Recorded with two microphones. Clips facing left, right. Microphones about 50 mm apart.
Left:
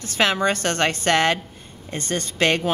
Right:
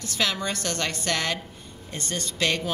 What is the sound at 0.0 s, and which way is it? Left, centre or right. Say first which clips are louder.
A woman's voice: left 7 dB; left.